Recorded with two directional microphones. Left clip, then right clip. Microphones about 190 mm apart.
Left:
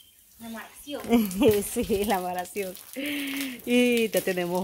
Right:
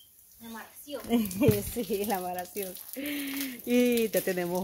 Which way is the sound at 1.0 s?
30° left (ahead or behind).